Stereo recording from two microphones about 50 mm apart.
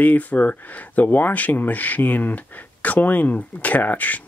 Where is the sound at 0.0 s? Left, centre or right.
Left.